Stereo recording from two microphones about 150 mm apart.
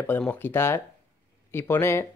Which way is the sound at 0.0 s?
10° left (ahead or behind).